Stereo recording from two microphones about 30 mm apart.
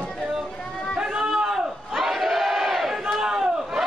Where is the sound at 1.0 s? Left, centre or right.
Right.